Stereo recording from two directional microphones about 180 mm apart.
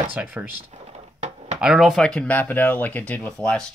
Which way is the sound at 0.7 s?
35° right (ahead or behind).